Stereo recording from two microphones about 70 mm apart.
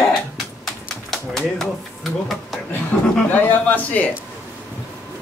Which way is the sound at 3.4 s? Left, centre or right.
Left.